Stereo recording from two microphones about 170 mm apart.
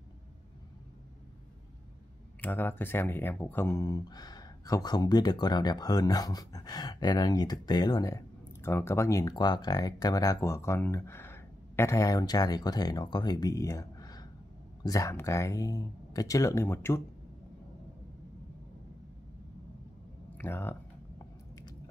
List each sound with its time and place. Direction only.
2.4 s speech: 10° left (ahead or behind)
20.3 s speech: 15° left (ahead or behind)
21.2 s biting: 20° left (ahead or behind)